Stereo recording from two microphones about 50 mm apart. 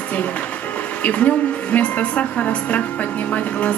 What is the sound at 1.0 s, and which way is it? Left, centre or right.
A woman's voice, left.